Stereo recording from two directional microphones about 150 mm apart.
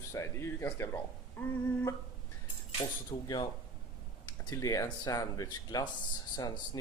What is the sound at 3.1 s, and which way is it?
Speech, 30° left (ahead or behind).